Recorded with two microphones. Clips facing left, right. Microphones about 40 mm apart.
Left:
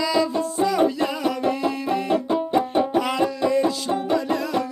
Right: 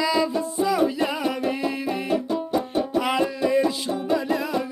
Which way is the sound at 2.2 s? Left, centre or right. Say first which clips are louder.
Left 4 dB; left.